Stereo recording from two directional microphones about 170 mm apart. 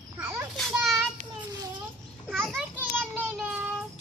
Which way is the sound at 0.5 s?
Centre (ahead or behind).